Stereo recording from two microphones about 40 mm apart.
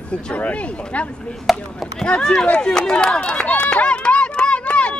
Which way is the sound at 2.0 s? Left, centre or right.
Left.